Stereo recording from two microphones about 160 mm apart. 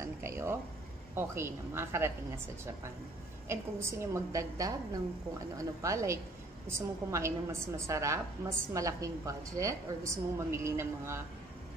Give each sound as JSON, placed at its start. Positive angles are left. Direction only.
{"t": 0.0, "sound": "a woman's voice", "side_deg": -15}
{"t": 5.8, "sound": "a woman's voice", "side_deg": -20}